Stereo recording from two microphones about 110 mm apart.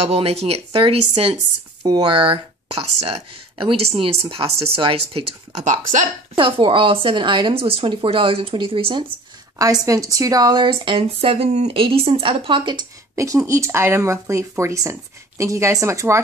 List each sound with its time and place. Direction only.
0.0 s speech: 70° right (ahead or behind)
1.8 s speech: 35° right (ahead or behind)
2.0 s speech: 50° right (ahead or behind); by 5.8 s 90° right
6.3 s a woman's voice: 50° right (ahead or behind)
9.6 s a woman's voice: 30° right (ahead or behind); by 12.8 s 45° right (ahead or behind)
13.1 s speech: 30° right (ahead or behind)